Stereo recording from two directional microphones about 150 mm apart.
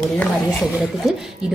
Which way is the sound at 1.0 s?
Centre (ahead or behind).